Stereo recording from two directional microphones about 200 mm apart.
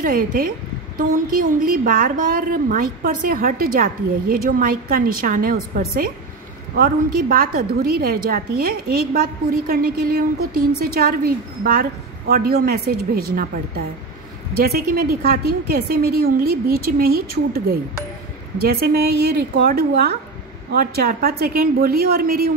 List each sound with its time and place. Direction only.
0.0 s a woman's voice: 45° right (ahead or behind)